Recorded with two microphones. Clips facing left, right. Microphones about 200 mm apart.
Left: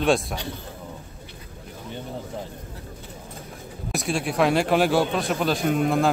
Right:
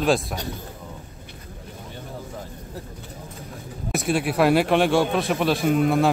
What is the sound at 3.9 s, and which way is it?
A man's voice, centre (ahead or behind).